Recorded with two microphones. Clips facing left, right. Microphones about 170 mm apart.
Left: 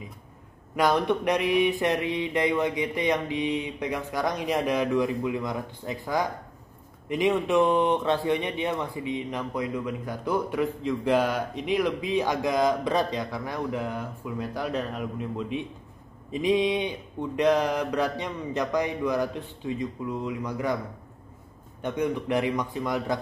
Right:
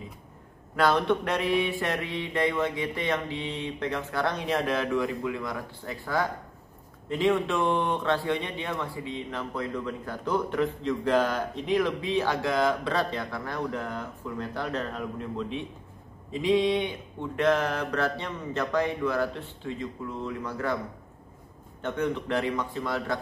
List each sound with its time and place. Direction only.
0.7 s speech: 15° left (ahead or behind)
21.8 s speech: 15° left (ahead or behind)